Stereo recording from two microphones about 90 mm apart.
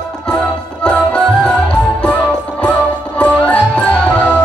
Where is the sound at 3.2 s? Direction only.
15° left (ahead or behind).